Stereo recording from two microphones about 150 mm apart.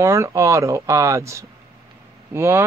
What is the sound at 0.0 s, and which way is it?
Speech, 20° right (ahead or behind).